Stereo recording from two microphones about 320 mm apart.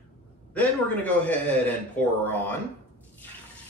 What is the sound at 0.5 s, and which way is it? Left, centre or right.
Speech, centre.